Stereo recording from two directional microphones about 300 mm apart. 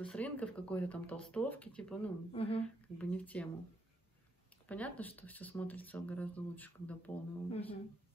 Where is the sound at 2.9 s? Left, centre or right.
Centre.